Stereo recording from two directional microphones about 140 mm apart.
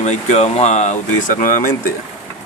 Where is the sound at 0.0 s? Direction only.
55° left (ahead or behind); by 1.7 s 75° left (ahead or behind).